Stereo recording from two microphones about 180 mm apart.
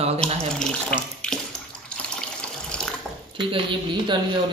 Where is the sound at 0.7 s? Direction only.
5° left (ahead or behind).